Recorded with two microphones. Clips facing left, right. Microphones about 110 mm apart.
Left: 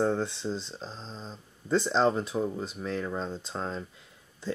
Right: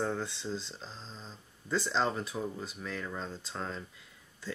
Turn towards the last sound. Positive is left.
turn(degrees=25)  # may be behind; listen again after turning